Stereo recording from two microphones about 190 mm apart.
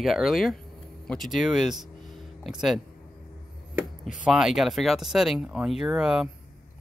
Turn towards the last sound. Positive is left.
turn(degrees=-5)  # may be behind; listen again after turning